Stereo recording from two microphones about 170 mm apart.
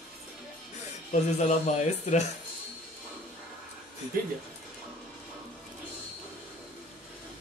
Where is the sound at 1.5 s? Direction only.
45° left (ahead or behind).